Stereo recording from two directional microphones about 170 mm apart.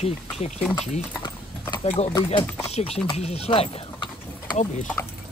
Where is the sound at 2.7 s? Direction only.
35° left (ahead or behind).